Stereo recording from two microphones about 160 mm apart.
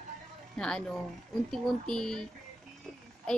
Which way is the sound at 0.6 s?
5° left (ahead or behind).